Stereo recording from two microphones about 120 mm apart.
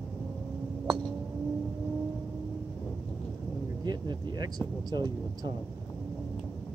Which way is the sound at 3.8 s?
35° right (ahead or behind).